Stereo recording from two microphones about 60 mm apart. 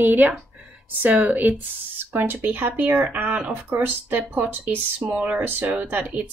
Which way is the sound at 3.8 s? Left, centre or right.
Right.